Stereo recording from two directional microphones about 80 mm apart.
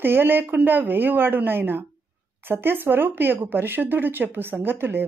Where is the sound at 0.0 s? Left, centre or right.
Right.